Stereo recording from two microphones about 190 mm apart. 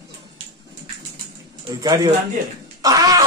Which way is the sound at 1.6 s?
20° right (ahead or behind).